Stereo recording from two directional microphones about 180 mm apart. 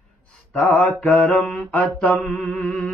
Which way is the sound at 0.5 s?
Centre (ahead or behind).